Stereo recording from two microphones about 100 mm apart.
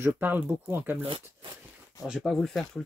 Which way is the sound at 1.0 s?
65° right (ahead or behind).